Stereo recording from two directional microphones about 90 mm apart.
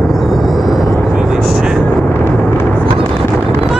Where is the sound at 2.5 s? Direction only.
20° left (ahead or behind).